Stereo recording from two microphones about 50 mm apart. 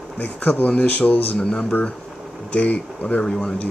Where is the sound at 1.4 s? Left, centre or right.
Left.